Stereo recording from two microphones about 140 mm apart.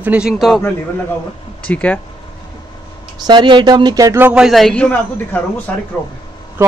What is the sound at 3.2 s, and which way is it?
Speech, 30° right (ahead or behind).